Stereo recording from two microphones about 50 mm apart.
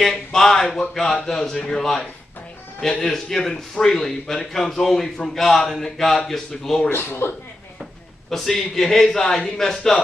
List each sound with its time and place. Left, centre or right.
0.0 s a man's voice: centre
6.9 s speech: left
8.3 s a man's voice: centre